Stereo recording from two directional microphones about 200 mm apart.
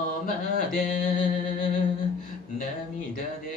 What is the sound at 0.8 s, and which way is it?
Music, 40° left (ahead or behind).